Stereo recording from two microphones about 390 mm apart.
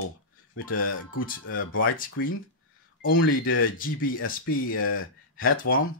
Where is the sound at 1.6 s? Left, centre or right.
Left.